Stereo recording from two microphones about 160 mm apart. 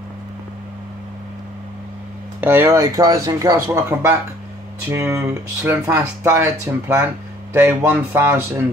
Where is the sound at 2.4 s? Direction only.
15° right (ahead or behind).